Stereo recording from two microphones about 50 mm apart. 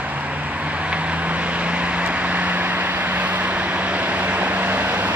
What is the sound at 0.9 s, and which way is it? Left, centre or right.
Vehicle, right.